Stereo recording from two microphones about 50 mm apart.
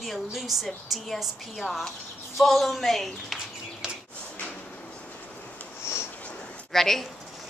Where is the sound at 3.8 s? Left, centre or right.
Centre.